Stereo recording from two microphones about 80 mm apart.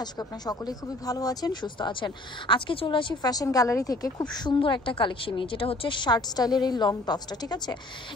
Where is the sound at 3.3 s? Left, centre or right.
Left.